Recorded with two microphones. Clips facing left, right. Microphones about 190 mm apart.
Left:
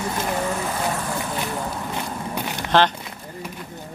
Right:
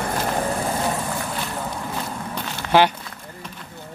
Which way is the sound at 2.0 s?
15° left (ahead or behind).